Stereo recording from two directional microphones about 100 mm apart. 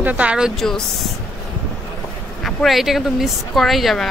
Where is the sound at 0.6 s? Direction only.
5° left (ahead or behind).